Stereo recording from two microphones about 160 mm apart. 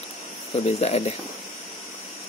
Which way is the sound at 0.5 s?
45° left (ahead or behind).